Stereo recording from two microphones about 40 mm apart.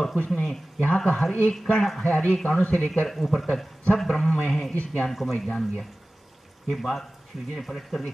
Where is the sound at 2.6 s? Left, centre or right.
Left.